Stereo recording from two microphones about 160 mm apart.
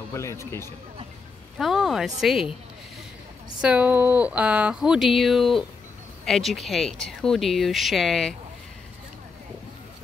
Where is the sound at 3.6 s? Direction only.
10° right (ahead or behind).